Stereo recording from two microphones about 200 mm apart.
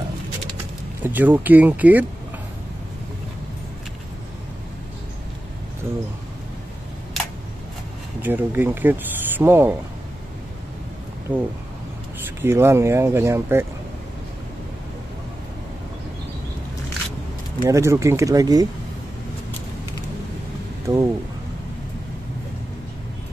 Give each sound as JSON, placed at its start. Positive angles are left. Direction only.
{"t": 1.0, "sound": "speech", "side_deg": -10}
{"t": 8.2, "sound": "speech", "side_deg": -10}
{"t": 11.3, "sound": "speech", "side_deg": 5}
{"t": 12.4, "sound": "speech", "side_deg": -10}
{"t": 17.6, "sound": "speech", "side_deg": -15}
{"t": 20.8, "sound": "speech", "side_deg": -15}